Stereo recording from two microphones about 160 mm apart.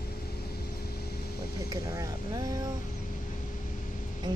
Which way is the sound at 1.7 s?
20° right (ahead or behind).